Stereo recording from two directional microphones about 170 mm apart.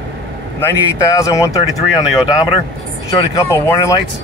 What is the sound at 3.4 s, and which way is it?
Speech, 15° left (ahead or behind).